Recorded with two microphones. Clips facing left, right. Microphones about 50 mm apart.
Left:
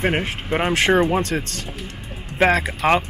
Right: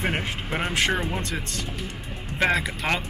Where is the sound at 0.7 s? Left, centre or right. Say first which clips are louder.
Left 7 dB; left.